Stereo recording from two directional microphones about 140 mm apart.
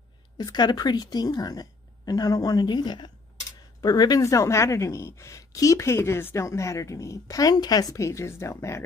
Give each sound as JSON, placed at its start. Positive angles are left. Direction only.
{"t": 0.4, "sound": "a woman's voice", "side_deg": 30}